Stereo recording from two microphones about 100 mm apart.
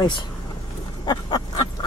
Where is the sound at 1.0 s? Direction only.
45° left (ahead or behind).